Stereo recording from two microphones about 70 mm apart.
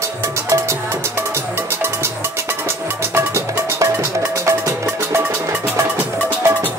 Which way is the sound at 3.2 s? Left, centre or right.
Right.